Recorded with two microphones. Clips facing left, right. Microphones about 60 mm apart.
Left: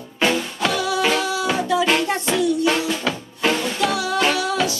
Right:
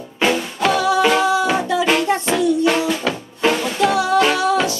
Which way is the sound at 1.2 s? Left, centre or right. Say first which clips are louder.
Right 6 dB; right.